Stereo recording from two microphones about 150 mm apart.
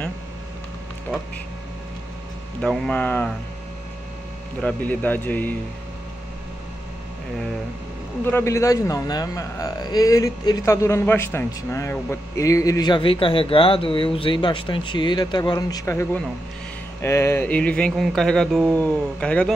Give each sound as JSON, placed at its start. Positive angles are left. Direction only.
{"t": 2.6, "sound": "speech", "side_deg": 5}
{"t": 4.6, "sound": "speech", "side_deg": 10}
{"t": 8.3, "sound": "a man's voice", "side_deg": 15}